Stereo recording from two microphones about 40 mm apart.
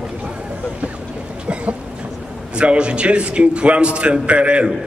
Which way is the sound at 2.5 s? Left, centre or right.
Right.